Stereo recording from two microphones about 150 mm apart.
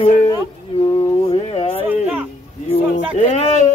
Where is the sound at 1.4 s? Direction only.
40° left (ahead or behind).